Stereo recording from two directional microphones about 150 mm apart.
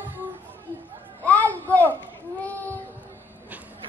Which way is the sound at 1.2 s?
10° left (ahead or behind).